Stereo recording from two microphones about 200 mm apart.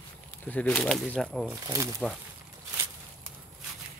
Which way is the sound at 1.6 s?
15° right (ahead or behind).